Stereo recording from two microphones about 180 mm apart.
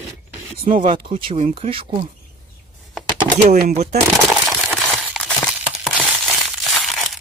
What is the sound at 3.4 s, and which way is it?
Speech, 60° right (ahead or behind).